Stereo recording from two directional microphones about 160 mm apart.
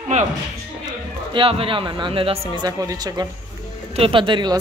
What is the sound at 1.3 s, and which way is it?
Speech, 35° right (ahead or behind).